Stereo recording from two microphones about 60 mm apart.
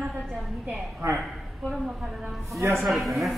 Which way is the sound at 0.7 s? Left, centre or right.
Centre.